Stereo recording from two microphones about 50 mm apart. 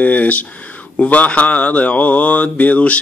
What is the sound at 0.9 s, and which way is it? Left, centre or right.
Mantra, left.